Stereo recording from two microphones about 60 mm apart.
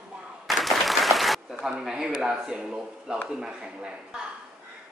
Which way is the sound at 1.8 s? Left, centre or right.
Centre.